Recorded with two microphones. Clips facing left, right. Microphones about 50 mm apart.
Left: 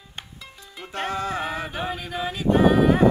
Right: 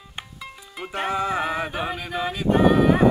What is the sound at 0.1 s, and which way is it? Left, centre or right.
Music, centre.